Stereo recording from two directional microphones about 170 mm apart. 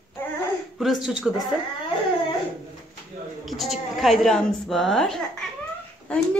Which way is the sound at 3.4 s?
Centre (ahead or behind).